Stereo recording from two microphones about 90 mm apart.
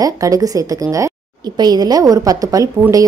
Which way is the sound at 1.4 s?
50° right (ahead or behind).